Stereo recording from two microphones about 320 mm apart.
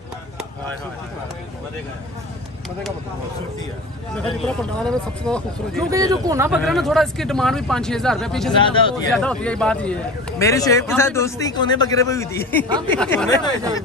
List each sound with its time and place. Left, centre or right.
4.1 s speech: centre
5.9 s speech: centre
8.5 s a man's voice: centre
9.1 s a man's voice: centre